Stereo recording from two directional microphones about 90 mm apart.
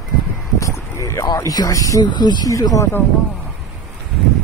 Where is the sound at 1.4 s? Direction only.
40° left (ahead or behind).